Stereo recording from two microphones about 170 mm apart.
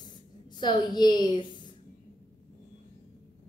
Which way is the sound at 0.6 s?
25° left (ahead or behind).